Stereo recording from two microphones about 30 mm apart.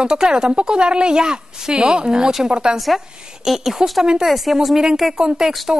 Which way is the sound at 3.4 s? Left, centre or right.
Centre.